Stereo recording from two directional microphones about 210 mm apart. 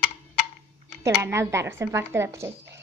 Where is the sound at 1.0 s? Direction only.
15° right (ahead or behind).